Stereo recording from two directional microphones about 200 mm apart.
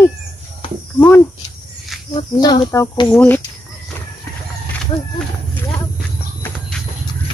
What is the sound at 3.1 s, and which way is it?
Speech, 5° left (ahead or behind).